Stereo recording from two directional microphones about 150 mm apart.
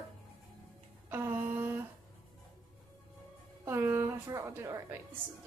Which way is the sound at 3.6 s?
15° right (ahead or behind).